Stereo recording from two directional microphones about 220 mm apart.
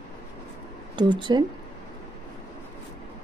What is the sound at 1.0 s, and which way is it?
Speech, 20° right (ahead or behind).